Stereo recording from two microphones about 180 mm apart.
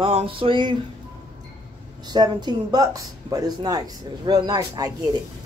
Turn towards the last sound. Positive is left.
turn(degrees=-20)  # may be behind; listen again after turning